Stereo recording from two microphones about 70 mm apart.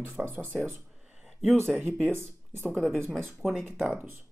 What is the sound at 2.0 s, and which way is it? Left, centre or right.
Speech, right.